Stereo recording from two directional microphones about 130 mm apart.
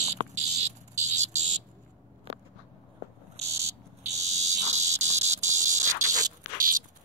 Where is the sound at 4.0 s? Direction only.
60° right (ahead or behind).